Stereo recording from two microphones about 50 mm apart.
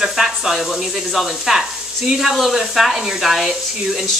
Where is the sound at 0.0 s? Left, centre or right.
Centre.